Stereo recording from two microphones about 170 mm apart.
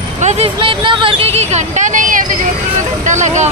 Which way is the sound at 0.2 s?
40° right (ahead or behind).